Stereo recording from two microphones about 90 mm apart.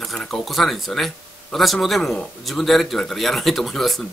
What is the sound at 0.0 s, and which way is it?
Speech, 5° left (ahead or behind).